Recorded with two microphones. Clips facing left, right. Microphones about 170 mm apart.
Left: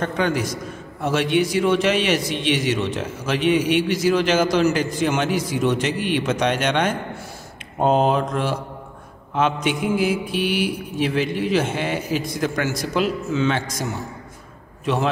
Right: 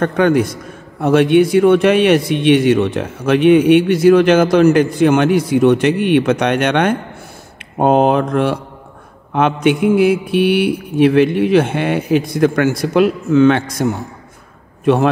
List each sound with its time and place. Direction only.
0.0 s a man's voice: 55° right (ahead or behind)